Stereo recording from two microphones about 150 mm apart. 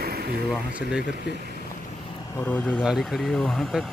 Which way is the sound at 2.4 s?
10° left (ahead or behind).